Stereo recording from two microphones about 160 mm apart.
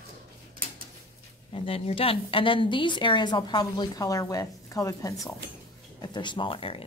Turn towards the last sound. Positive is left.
turn(degrees=35)  # may be behind; listen again after turning